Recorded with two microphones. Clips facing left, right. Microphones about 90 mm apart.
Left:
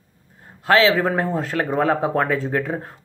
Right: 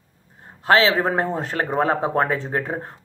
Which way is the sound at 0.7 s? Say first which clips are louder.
Left 1 dB; 25° right (ahead or behind).